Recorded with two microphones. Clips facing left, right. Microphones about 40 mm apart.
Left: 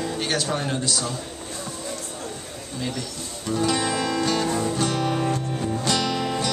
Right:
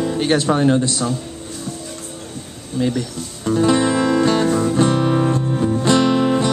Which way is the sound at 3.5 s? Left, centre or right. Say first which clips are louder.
Right 8 dB; right.